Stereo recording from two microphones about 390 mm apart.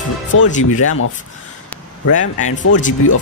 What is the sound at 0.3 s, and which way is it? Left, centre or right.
Speech, left.